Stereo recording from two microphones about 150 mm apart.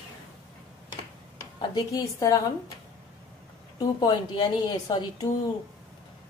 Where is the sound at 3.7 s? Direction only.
30° left (ahead or behind).